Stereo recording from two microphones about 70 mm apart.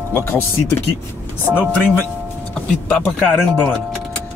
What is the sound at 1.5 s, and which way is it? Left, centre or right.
Speech, left.